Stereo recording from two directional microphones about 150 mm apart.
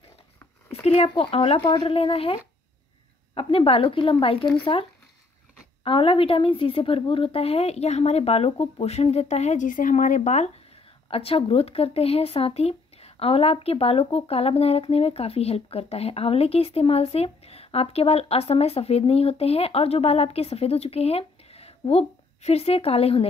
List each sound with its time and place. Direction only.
0.8 s speech: 40° left (ahead or behind)
5.9 s a woman's voice: 35° left (ahead or behind); by 10.5 s 50° left (ahead or behind)
11.1 s speech: 40° left (ahead or behind)